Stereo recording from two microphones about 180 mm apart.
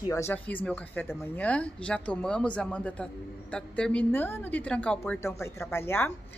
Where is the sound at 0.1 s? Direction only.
10° left (ahead or behind).